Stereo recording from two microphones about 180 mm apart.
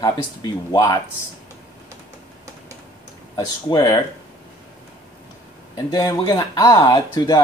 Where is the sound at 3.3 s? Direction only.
20° left (ahead or behind).